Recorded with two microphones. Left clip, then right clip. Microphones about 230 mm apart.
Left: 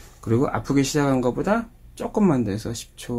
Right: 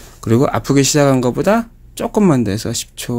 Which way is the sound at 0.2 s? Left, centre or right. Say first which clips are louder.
Right 8 dB; right.